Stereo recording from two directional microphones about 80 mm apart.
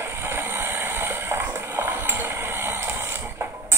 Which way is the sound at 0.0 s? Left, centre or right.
Right.